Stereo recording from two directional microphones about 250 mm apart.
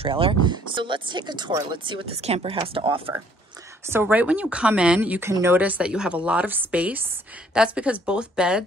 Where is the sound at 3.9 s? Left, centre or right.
Centre.